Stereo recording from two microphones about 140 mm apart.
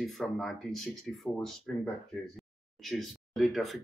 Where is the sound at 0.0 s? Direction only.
Centre (ahead or behind).